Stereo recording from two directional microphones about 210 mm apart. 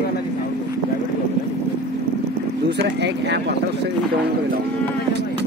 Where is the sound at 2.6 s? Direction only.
55° right (ahead or behind).